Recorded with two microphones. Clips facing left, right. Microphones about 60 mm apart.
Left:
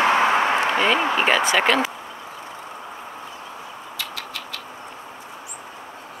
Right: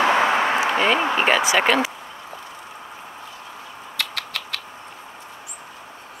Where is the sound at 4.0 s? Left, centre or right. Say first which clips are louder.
Right 4 dB; right.